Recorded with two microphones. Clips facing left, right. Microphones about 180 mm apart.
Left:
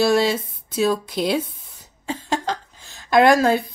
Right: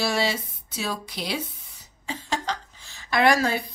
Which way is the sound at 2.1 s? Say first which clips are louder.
Left 5 dB; 50° left (ahead or behind).